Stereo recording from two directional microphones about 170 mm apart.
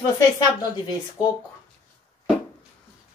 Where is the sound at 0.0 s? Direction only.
25° left (ahead or behind).